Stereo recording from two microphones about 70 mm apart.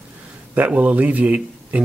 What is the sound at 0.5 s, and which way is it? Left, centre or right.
Speech, right.